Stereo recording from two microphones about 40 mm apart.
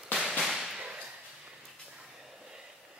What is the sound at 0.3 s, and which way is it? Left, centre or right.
Whip, centre.